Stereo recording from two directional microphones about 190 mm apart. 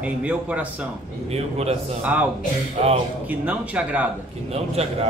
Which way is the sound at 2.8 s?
35° right (ahead or behind).